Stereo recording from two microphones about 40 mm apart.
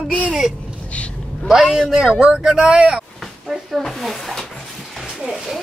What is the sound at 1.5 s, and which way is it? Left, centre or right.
A man's voice, centre.